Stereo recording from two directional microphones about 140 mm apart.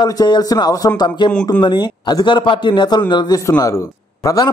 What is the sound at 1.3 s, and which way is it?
Speech, 10° left (ahead or behind).